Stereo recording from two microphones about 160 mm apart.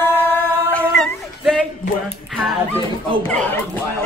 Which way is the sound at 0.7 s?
5° left (ahead or behind).